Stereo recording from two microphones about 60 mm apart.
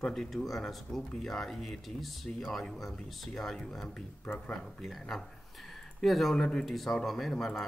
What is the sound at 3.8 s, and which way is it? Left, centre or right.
Speech, centre.